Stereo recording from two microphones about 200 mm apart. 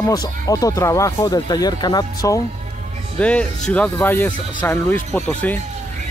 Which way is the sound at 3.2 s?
5° left (ahead or behind).